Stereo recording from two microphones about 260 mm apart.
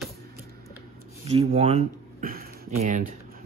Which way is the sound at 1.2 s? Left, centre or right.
Right.